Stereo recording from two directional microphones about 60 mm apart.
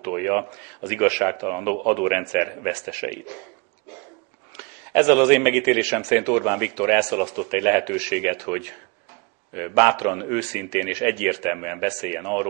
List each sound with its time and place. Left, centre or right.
0.0 s a man's voice: right
4.6 s a man's voice: right